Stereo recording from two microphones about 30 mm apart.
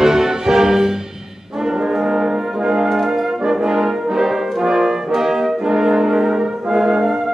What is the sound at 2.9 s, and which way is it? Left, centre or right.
Brass instrument, centre.